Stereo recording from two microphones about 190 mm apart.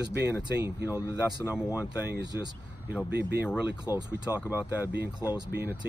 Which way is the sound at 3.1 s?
60° right (ahead or behind).